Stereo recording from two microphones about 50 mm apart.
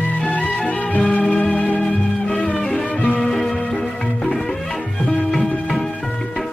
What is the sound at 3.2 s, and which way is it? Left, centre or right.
Music, centre.